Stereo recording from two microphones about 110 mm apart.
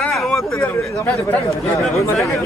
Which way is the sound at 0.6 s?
15° left (ahead or behind).